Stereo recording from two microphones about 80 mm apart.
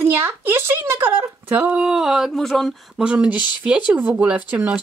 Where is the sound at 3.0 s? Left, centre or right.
Centre.